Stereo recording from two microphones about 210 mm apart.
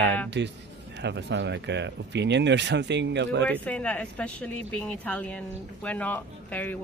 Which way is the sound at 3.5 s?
5° left (ahead or behind).